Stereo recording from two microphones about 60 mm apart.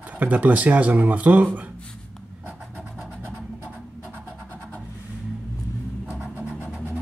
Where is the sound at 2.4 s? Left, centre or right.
Right.